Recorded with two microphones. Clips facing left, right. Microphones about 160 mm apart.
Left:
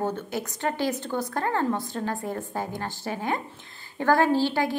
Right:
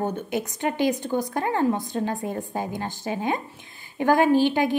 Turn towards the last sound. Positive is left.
turn(degrees=-15)  # may be behind; listen again after turning